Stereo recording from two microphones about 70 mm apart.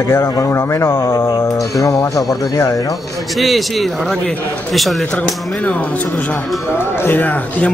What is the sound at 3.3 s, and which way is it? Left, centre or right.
A man's voice, centre.